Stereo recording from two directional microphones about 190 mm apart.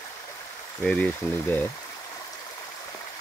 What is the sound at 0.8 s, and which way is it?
Speech, 5° left (ahead or behind).